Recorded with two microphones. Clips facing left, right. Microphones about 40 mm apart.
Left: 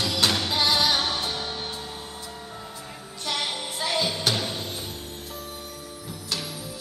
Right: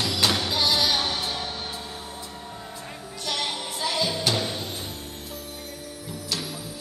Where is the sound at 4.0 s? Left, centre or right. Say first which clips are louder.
Right 1 dB; left.